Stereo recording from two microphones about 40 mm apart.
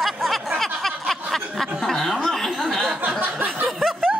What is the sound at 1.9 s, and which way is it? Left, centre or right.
Speech, centre.